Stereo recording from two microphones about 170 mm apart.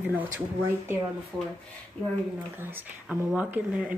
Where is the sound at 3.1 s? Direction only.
5° right (ahead or behind).